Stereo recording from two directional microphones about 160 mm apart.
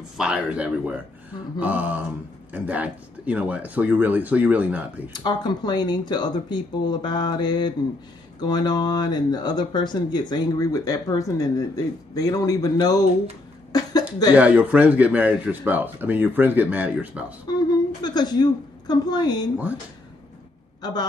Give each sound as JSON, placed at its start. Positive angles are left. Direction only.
{"t": 0.2, "sound": "speech", "side_deg": -5}
{"t": 5.1, "sound": "speech", "side_deg": 25}
{"t": 13.7, "sound": "a sound", "side_deg": 25}
{"t": 14.3, "sound": "speech", "side_deg": -10}
{"t": 17.5, "sound": "a woman's voice", "side_deg": 25}
{"t": 20.8, "sound": "speech", "side_deg": 25}